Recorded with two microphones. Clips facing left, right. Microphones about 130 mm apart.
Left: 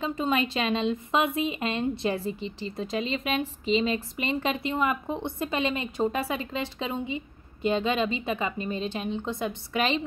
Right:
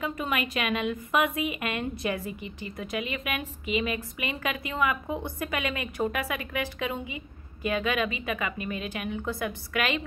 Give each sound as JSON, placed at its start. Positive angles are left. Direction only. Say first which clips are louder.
{"t": 0.0, "sound": "a woman's voice", "louder": "left 3 dB", "side_deg": 25}